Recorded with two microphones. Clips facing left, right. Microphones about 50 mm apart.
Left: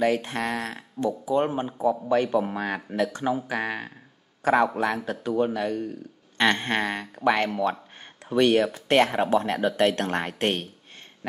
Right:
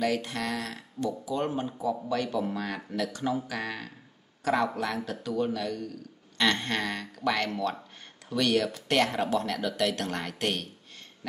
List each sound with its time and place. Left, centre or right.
0.0 s speech: left